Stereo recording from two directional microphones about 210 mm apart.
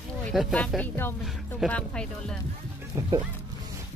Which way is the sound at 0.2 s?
Centre (ahead or behind).